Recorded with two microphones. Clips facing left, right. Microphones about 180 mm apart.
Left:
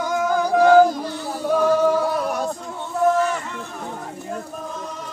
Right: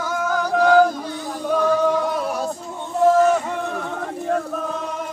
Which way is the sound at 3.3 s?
65° right (ahead or behind).